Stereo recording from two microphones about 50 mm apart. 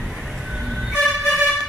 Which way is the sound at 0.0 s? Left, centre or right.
Centre.